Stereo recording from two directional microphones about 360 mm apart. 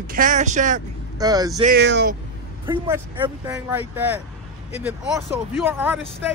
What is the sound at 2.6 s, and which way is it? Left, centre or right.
Speech, centre.